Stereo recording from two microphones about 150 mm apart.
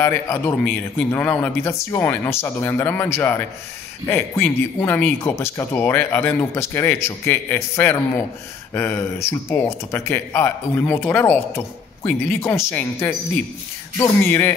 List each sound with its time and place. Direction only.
0.0 s speech: 15° left (ahead or behind)